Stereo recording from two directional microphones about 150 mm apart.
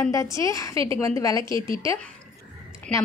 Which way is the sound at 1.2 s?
20° left (ahead or behind).